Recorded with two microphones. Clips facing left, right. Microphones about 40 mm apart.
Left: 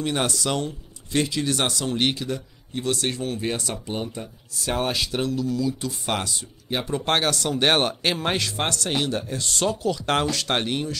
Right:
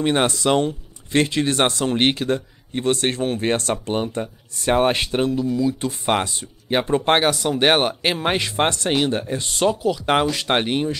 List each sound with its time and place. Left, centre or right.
0.0 s speech: right
7.1 s speech: centre